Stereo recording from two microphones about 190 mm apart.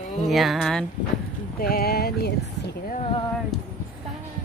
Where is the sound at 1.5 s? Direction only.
50° left (ahead or behind).